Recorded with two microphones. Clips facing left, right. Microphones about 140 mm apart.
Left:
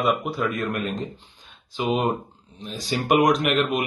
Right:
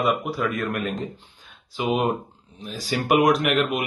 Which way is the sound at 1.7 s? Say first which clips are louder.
Even; 5° right (ahead or behind).